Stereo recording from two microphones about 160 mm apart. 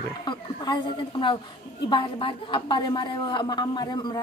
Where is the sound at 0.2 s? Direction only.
25° left (ahead or behind).